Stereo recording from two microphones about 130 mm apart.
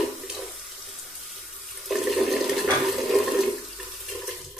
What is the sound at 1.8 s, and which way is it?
Toilet flush, centre (ahead or behind).